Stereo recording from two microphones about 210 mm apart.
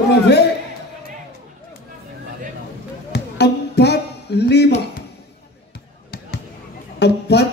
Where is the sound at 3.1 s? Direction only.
50° left (ahead or behind).